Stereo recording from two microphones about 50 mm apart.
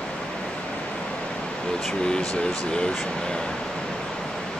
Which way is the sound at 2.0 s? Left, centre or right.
Centre.